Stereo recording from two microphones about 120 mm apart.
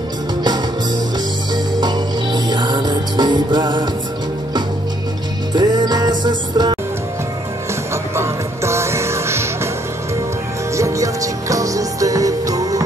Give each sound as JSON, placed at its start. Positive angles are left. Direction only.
{"t": 1.5, "sound": "music", "side_deg": -35}
{"t": 5.5, "sound": "music", "side_deg": -35}
{"t": 7.9, "sound": "music", "side_deg": -25}
{"t": 10.8, "sound": "music", "side_deg": -25}